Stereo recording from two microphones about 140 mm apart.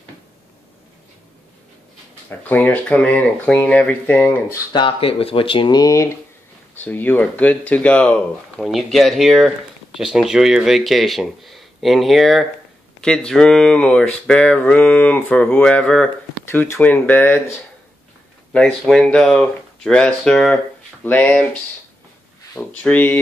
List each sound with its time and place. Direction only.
2.2 s speech: 10° left (ahead or behind)
4.7 s speech: 40° left (ahead or behind); by 16.1 s 5° left (ahead or behind)
16.4 s speech: 20° left (ahead or behind)
22.6 s speech: 10° left (ahead or behind)